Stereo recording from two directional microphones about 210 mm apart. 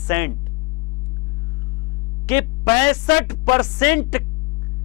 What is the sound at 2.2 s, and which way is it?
Speech, 10° left (ahead or behind).